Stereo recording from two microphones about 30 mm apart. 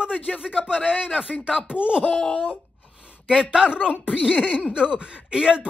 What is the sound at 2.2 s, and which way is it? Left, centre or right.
Wail, left.